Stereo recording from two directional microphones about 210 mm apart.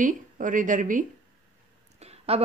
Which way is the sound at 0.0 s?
40° right (ahead or behind).